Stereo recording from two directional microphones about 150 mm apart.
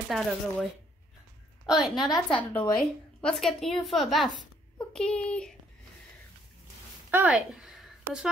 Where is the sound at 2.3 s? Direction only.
35° left (ahead or behind).